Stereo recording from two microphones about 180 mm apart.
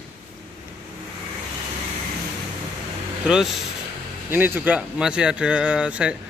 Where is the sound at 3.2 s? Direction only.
5° right (ahead or behind).